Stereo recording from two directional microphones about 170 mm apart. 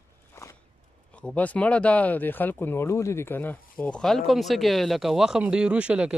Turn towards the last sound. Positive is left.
turn(degrees=-5)  # may be behind; listen again after turning